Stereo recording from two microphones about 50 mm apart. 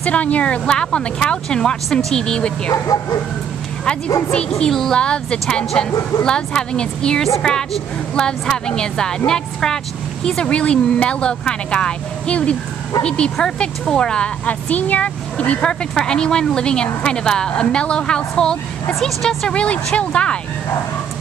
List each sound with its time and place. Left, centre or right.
0.0 s a woman's voice: left
4.3 s a woman's voice: centre